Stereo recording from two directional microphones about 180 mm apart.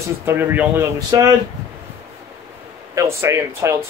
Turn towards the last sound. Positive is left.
turn(degrees=-15)  # may be behind; listen again after turning